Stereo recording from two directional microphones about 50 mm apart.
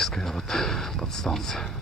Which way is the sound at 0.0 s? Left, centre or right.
Centre.